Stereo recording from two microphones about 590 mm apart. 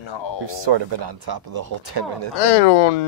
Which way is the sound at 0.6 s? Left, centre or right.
Right.